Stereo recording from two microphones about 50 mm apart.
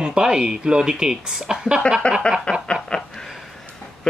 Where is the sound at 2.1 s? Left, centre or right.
Left.